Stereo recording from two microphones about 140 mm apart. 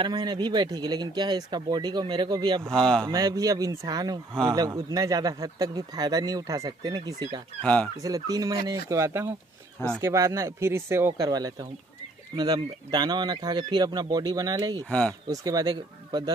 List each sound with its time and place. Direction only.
0.0 s speech: 30° right (ahead or behind)
2.7 s speech: 5° left (ahead or behind)
3.1 s speech: 25° right (ahead or behind)
7.6 s speech: 10° left (ahead or behind)
8.0 s speech: 25° right (ahead or behind)
14.9 s speech: 10° left (ahead or behind)
15.2 s speech: 25° right (ahead or behind)